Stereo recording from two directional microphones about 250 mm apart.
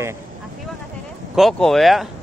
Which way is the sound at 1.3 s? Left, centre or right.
Centre.